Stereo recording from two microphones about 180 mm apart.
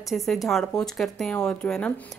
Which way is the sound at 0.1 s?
Centre (ahead or behind).